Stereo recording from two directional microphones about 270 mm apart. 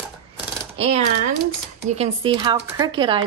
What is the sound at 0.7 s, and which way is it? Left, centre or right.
Speech, right.